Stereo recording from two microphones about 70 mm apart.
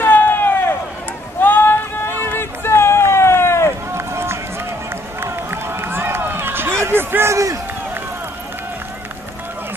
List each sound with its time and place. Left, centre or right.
0.0 s a sound: left
2.2 s run: left
3.9 s run: right